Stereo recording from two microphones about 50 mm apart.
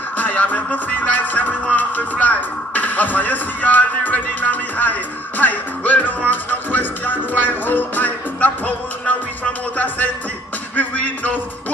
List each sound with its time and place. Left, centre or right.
0.2 s music: left